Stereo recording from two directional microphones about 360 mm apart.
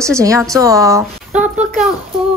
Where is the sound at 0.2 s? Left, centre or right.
Centre.